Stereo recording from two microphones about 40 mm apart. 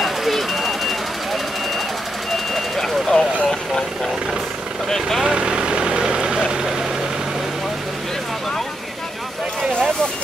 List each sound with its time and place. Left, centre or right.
0.0 s vehicle: centre
2.3 s vehicle: centre
5.2 s vehicle: right